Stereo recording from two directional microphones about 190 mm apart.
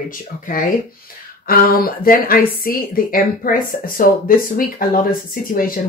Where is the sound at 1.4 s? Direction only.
50° left (ahead or behind).